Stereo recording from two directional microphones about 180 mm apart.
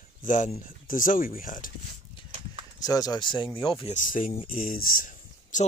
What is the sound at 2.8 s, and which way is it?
Speech, 20° left (ahead or behind).